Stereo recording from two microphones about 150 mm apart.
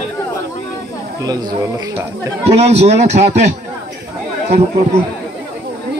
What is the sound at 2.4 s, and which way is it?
A man's voice, 45° right (ahead or behind).